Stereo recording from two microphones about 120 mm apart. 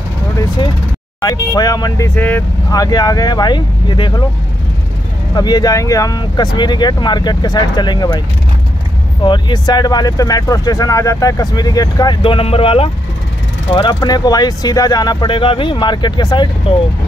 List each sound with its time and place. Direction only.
1.2 s speech: 30° left (ahead or behind)
2.1 s speech: 15° left (ahead or behind)
2.7 s speech: 35° left (ahead or behind)
5.3 s speech: 35° left (ahead or behind)
9.2 s speech: 40° left (ahead or behind)
12.2 s speech: 50° left (ahead or behind)